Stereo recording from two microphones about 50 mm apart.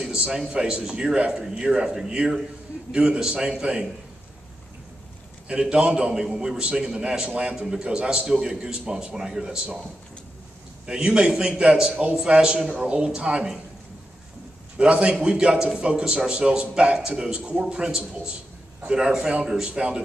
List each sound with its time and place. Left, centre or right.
0.0 s a sound: centre
0.5 s a man's voice: centre
5.5 s a man's voice: centre
10.9 s a man's voice: centre
14.8 s a man's voice: right